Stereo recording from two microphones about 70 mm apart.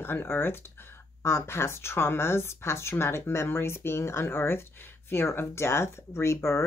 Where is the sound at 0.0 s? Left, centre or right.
Left.